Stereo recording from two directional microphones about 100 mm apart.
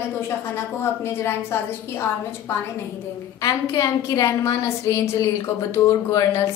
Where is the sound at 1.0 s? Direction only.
25° left (ahead or behind).